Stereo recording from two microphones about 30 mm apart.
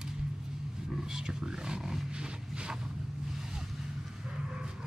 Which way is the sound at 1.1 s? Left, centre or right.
Right.